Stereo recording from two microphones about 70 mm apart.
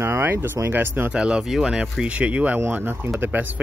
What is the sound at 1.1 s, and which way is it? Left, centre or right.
Speech, centre.